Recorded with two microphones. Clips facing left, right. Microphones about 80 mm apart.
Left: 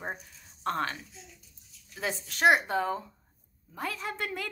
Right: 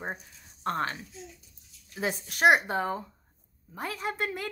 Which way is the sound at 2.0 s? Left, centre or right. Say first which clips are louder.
Right 2 dB; centre.